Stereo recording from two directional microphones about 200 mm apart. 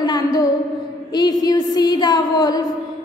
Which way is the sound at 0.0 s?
20° left (ahead or behind).